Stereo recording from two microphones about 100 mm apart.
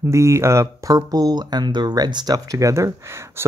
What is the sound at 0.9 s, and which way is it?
Speech, 40° right (ahead or behind).